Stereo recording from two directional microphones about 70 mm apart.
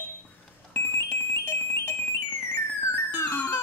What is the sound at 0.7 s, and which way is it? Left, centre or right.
Alarm, left.